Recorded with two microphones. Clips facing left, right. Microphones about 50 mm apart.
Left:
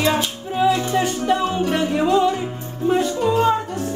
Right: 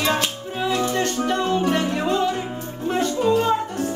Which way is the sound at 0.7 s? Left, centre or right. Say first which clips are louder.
Left 2 dB; centre.